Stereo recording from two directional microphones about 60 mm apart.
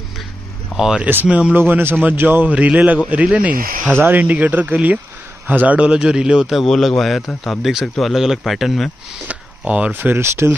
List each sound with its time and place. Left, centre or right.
0.7 s speech: centre
1.0 s speech: right
1.6 s a man's voice: right
2.5 s speech: right
3.9 s speech: right; by 6.6 s centre
6.6 s speech: centre
9.3 s a sound: right
9.9 s a man's voice: right